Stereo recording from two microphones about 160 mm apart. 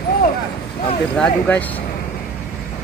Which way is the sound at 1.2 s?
10° left (ahead or behind).